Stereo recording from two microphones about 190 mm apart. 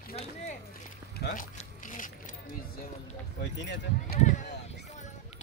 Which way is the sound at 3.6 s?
65° left (ahead or behind).